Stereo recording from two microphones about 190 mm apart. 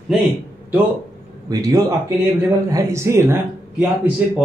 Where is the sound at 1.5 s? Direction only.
15° right (ahead or behind).